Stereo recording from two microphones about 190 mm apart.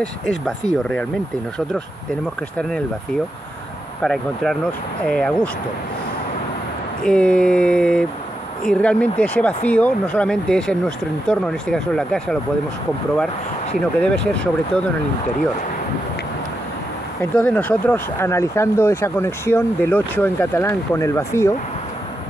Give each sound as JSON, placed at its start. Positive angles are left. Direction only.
{"t": 0.0, "sound": "speech", "side_deg": 5}
{"t": 4.0, "sound": "speech", "side_deg": 0}
{"t": 7.0, "sound": "speech", "side_deg": 5}
{"t": 13.7, "sound": "speech", "side_deg": 5}
{"t": 17.2, "sound": "speech", "side_deg": 5}